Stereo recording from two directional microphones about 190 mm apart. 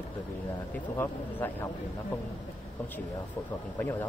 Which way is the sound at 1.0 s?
10° left (ahead or behind).